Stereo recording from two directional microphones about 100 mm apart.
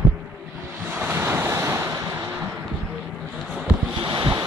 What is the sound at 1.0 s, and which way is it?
Waves, 20° right (ahead or behind).